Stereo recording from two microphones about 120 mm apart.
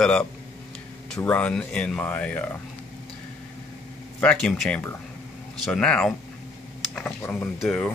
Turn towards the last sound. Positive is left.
turn(degrees=5)  # may be behind; listen again after turning